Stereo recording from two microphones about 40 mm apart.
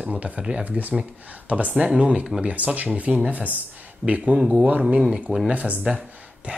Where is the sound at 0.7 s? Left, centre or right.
Right.